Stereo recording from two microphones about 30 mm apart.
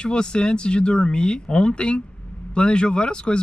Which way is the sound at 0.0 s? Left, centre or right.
Left.